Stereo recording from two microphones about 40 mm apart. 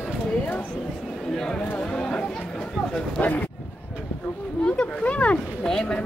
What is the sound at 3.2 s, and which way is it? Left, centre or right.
Speech, left.